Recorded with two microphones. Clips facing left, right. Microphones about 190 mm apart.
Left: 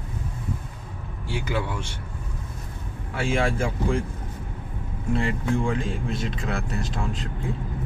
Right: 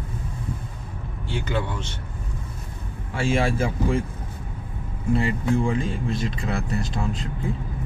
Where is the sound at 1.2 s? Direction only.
10° left (ahead or behind).